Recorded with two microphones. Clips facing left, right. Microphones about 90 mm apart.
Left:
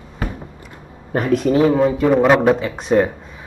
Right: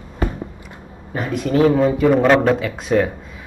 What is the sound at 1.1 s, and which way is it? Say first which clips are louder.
Speech: left 5 dB; 60° left (ahead or behind).